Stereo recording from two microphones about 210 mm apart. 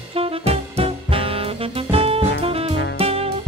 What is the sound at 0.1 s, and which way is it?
Saxophone, 30° right (ahead or behind).